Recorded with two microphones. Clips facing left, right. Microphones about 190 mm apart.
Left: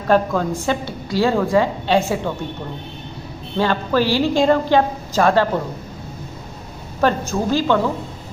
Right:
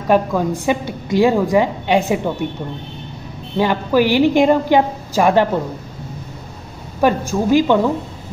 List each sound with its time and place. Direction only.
0.1 s a woman's voice: 15° right (ahead or behind)
3.5 s a woman's voice: 15° right (ahead or behind)
7.0 s a woman's voice: 10° right (ahead or behind)